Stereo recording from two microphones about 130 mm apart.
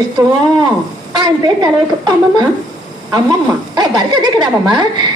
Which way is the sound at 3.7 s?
30° right (ahead or behind).